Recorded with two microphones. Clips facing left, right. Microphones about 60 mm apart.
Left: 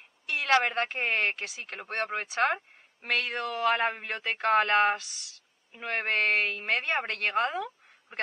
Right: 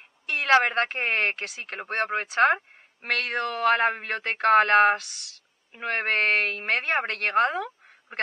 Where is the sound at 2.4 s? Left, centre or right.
Centre.